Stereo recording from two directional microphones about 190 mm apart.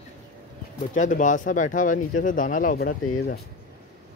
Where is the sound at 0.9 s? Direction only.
40° left (ahead or behind).